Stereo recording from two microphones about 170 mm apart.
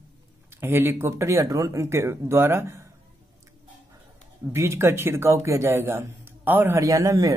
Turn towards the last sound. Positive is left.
turn(degrees=-20)  # may be behind; listen again after turning